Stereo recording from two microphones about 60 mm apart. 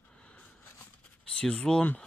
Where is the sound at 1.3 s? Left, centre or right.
Centre.